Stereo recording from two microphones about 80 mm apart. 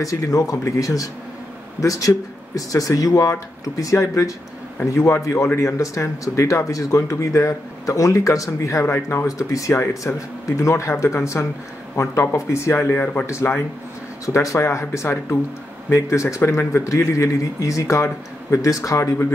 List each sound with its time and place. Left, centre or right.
0.0 s speech: left
8.8 s speech: left
14.2 s speech: left